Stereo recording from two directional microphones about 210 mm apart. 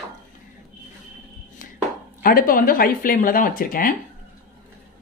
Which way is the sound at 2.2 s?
45° left (ahead or behind).